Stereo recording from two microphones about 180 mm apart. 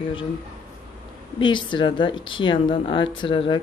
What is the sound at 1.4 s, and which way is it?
Speech, 25° left (ahead or behind).